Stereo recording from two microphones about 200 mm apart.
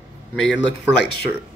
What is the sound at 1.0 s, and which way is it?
Speech, 55° left (ahead or behind).